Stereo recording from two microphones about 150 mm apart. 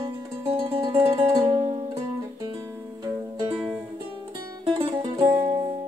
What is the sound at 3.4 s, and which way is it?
Music, 30° right (ahead or behind).